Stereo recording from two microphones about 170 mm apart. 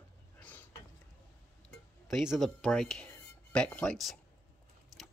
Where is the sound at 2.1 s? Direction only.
Centre (ahead or behind).